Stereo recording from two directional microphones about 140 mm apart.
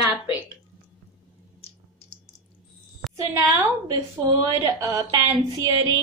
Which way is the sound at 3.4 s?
25° right (ahead or behind).